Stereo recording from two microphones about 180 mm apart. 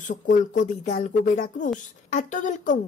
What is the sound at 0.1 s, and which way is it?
Speech, 45° left (ahead or behind).